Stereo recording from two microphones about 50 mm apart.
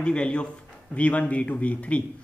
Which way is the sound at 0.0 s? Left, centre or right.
Left.